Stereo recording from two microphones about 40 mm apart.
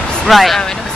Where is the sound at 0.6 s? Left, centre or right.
Centre.